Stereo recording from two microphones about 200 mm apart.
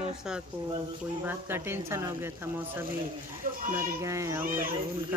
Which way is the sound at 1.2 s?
10° right (ahead or behind).